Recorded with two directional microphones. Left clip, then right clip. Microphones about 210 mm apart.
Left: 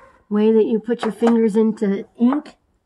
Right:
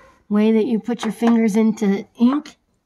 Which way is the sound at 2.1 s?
50° right (ahead or behind).